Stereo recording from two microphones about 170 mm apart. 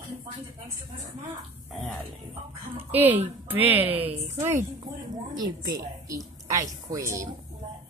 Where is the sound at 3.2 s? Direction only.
10° right (ahead or behind).